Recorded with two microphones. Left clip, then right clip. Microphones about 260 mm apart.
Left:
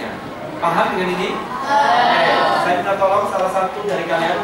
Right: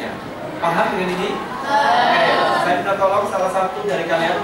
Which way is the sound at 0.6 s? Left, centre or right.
Centre.